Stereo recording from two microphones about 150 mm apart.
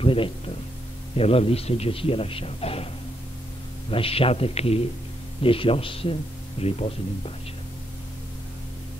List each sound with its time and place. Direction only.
0.0 s a man's voice: 35° left (ahead or behind)
3.9 s a man's voice: 40° left (ahead or behind)